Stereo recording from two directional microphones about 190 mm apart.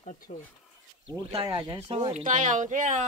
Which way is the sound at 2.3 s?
40° right (ahead or behind).